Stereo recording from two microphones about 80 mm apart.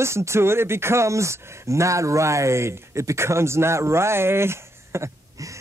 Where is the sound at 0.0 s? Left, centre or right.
Right.